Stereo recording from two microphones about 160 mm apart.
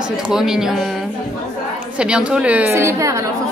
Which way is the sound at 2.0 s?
5° right (ahead or behind).